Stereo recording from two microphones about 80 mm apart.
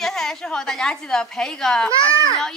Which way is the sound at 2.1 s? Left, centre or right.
Right.